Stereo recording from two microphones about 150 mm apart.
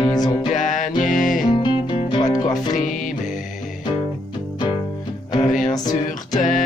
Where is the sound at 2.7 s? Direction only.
60° left (ahead or behind).